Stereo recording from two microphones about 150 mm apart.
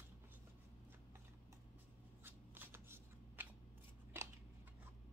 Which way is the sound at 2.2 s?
15° right (ahead or behind).